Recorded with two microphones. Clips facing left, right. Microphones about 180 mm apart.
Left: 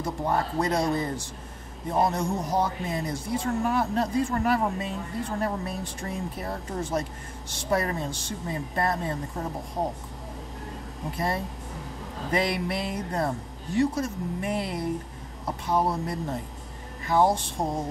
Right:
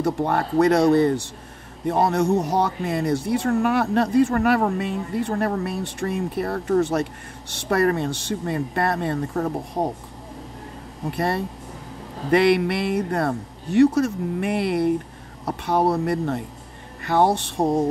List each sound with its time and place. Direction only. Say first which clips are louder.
0.0 s speech: right 5 dB; 70° right (ahead or behind)
11.1 s speech: right 5 dB; 70° right (ahead or behind)